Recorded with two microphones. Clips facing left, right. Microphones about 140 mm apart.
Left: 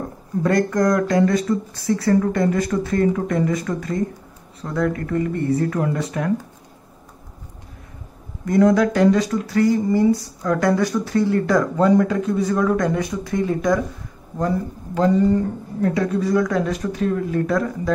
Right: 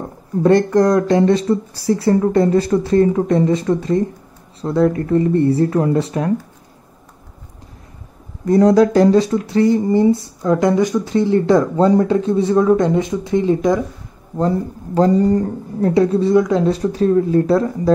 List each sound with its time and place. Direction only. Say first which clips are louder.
0.4 s speech: right 6 dB; 30° right (ahead or behind)
8.5 s speech: right 4 dB; 35° right (ahead or behind)
14.4 s speech: right 4 dB; 35° right (ahead or behind)